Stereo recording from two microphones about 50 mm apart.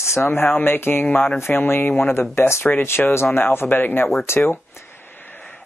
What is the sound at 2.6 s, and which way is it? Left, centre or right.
Speech, left.